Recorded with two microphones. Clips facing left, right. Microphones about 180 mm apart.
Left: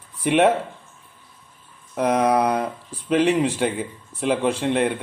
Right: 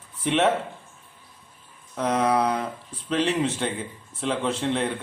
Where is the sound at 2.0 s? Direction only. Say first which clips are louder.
Left 4 dB; 15° left (ahead or behind).